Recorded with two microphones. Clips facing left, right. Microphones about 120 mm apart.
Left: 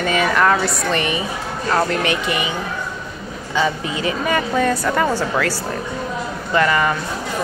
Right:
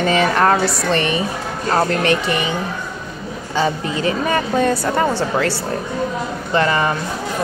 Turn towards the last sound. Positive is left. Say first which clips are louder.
# even
turn(degrees=-30)  # may be behind; listen again after turning